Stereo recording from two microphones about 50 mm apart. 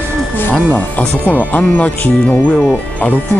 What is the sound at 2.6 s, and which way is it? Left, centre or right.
Speech, left.